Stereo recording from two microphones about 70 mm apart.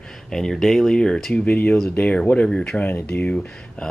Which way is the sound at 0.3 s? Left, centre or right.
Centre.